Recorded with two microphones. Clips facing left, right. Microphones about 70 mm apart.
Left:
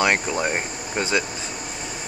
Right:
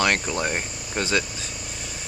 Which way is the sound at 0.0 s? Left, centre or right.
Centre.